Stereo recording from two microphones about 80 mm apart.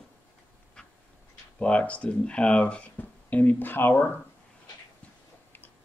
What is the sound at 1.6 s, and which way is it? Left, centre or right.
Speech, centre.